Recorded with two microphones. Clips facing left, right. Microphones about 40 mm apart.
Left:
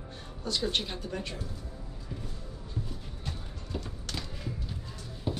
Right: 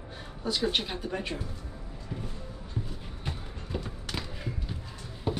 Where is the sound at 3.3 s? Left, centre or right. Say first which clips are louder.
Right 3 dB; centre.